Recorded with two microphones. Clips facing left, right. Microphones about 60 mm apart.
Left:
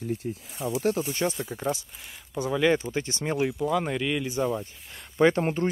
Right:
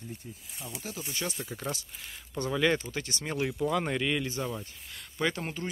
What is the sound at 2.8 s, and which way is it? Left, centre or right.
Speech, left.